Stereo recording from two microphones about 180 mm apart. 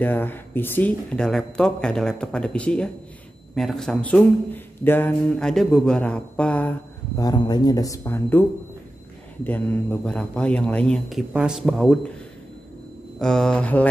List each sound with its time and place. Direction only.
0.0 s a man's voice: 10° left (ahead or behind)
7.2 s a man's voice: 20° left (ahead or behind); by 12.1 s 5° left (ahead or behind)
13.2 s a man's voice: 5° left (ahead or behind)